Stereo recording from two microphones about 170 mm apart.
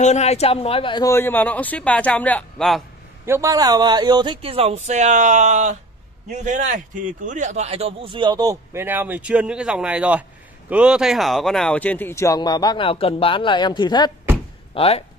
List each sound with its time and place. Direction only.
0.0 s speech: 40° left (ahead or behind)
1.0 s speech: 15° left (ahead or behind)
3.3 s a man's voice: 20° right (ahead or behind); by 15.0 s 35° left (ahead or behind)